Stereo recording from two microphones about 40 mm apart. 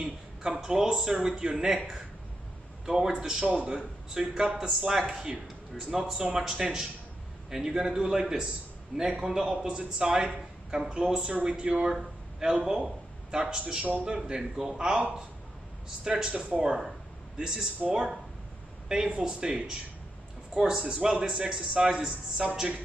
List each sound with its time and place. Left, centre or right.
0.0 s speech: centre
2.8 s speech: centre
3.4 s a man's voice: right
4.2 s speech: centre
5.1 s a man's voice: centre
16.0 s speech: centre
16.3 s a man's voice: right